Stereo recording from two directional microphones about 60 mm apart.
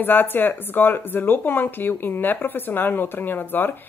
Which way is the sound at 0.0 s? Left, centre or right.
Left.